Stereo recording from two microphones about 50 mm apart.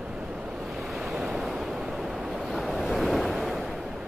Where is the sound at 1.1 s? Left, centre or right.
Centre.